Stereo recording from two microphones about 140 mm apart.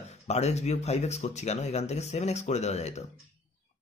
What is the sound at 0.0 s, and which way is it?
Speech, 50° left (ahead or behind).